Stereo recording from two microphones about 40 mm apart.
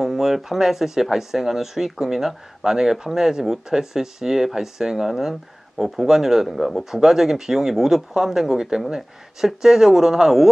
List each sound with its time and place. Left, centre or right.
0.0 s speech: centre